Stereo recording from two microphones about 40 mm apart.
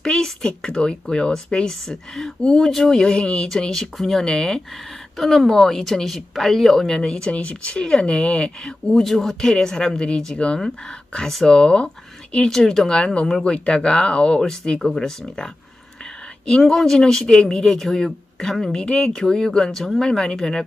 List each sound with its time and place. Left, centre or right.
0.0 s speech: centre
5.1 s speech: centre
7.0 s speech: left
8.9 s speech: centre
12.4 s speech: centre
13.0 s speech: left
14.4 s speech: centre
19.7 s speech: centre
20.1 s speech: centre